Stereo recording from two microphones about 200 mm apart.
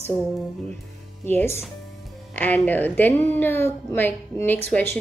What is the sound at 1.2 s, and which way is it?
A woman's voice, 10° left (ahead or behind).